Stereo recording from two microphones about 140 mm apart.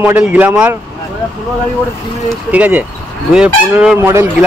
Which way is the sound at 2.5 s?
10° right (ahead or behind).